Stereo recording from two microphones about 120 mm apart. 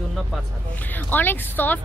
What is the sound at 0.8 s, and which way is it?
Speech, 15° left (ahead or behind).